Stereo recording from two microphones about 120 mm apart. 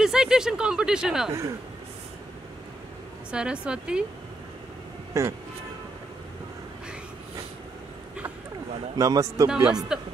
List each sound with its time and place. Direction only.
0.0 s speech: 5° right (ahead or behind)
3.3 s speech: 10° right (ahead or behind)
5.1 s a man's voice: 25° right (ahead or behind)
8.9 s a man's voice: 30° right (ahead or behind)
9.5 s speech: 5° right (ahead or behind)